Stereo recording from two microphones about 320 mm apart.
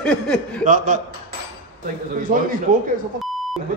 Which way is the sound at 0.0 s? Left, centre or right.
Centre.